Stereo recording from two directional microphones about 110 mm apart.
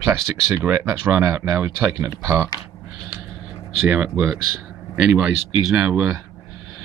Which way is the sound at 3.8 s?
10° right (ahead or behind).